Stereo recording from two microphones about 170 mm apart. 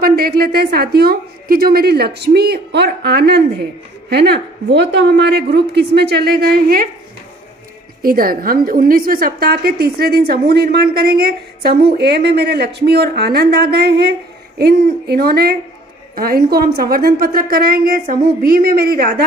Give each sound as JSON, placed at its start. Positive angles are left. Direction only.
{"t": 0.0, "sound": "a woman's voice", "side_deg": -65}
{"t": 4.7, "sound": "a woman's voice", "side_deg": -90}
{"t": 8.0, "sound": "a woman's voice", "side_deg": -60}